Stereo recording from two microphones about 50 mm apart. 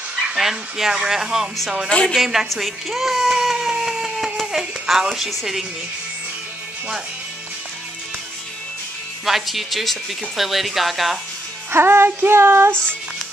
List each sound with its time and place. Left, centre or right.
0.3 s speech: centre
1.9 s a woman's voice: centre
2.1 s speech: centre
9.2 s speech: centre
11.7 s female singing: right